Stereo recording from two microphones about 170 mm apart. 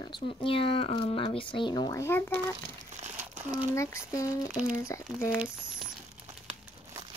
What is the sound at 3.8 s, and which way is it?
A child's voice, 15° left (ahead or behind).